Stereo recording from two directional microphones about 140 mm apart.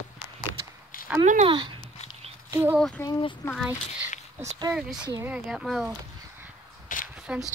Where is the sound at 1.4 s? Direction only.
35° right (ahead or behind).